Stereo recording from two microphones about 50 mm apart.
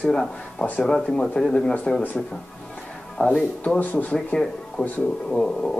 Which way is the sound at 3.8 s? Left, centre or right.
Left.